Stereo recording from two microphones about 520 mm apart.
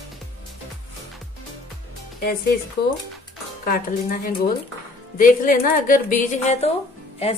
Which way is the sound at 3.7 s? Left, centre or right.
Centre.